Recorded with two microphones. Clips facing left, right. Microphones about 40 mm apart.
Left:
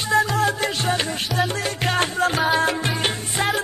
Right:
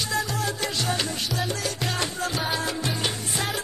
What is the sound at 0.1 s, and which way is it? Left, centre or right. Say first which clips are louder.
Music: left 12 dB; left.